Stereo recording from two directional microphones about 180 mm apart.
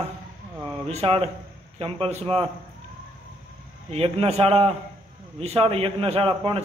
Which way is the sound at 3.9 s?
35° right (ahead or behind).